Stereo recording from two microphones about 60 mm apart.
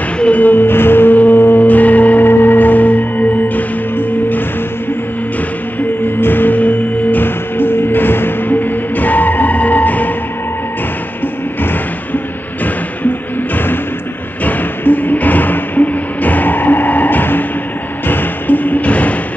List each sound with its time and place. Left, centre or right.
0.2 s music: left
6.2 s music: left
14.4 s music: left